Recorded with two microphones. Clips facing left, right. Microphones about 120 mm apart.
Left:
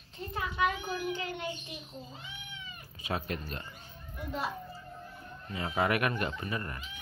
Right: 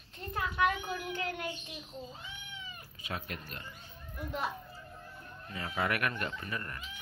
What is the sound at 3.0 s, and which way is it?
Speech, 25° left (ahead or behind).